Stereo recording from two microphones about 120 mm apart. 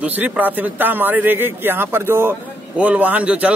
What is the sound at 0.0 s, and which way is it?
A man's voice, 10° right (ahead or behind).